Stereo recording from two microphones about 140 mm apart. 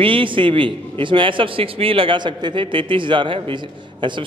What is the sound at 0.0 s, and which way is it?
A man's voice, 40° right (ahead or behind).